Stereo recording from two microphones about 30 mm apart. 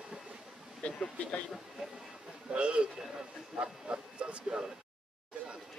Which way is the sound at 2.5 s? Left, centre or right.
Right.